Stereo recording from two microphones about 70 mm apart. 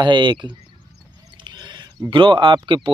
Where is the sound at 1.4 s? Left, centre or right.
Right.